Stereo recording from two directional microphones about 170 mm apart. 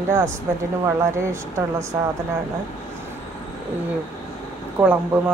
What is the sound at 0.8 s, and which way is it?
A woman's voice, 15° right (ahead or behind).